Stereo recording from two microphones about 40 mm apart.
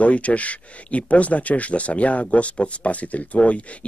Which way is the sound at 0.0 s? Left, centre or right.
Left.